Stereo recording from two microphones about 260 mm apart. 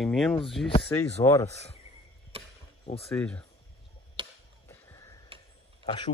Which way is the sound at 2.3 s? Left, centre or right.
Right.